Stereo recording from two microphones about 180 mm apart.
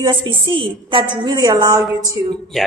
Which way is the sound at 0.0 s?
30° right (ahead or behind).